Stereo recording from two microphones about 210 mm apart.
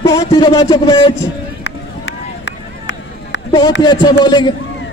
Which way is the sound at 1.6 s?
60° left (ahead or behind).